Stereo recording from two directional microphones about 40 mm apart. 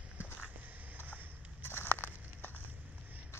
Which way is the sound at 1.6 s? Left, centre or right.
Left.